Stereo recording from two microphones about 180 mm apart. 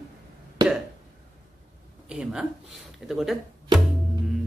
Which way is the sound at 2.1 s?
5° right (ahead or behind).